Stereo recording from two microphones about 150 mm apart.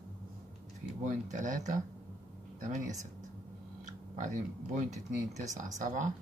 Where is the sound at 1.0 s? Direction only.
55° right (ahead or behind).